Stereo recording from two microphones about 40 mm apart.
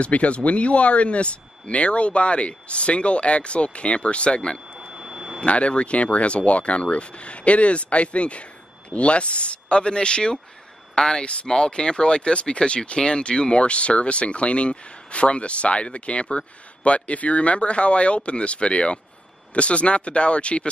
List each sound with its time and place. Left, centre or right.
0.0 s speech: left
4.7 s a sound: centre
5.4 s speech: left